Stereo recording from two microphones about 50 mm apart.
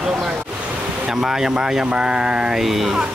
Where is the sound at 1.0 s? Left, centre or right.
Centre.